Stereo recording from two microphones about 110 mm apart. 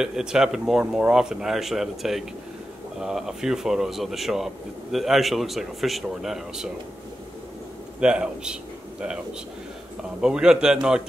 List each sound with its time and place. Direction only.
0.0 s speech: 5° right (ahead or behind)
8.0 s a man's voice: 5° right (ahead or behind)
10.2 s a man's voice: 5° right (ahead or behind)